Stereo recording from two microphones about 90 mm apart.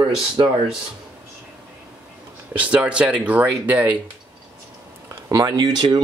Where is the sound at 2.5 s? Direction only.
15° right (ahead or behind).